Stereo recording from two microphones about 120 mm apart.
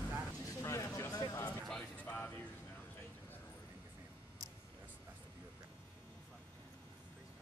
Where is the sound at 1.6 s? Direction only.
10° left (ahead or behind).